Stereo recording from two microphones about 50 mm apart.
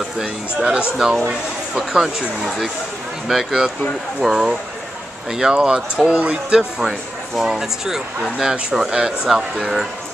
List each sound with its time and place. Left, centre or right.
0.2 s speech: centre